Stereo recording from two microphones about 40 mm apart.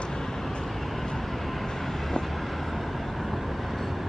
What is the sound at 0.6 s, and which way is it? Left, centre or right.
Vehicle, centre.